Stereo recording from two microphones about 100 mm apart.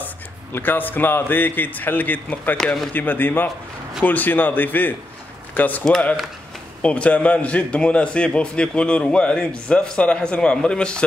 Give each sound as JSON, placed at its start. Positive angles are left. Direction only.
{"t": 0.0, "sound": "a man's voice", "side_deg": 20}
{"t": 5.9, "sound": "a man's voice", "side_deg": 5}